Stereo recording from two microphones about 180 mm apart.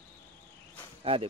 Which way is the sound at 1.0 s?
30° right (ahead or behind).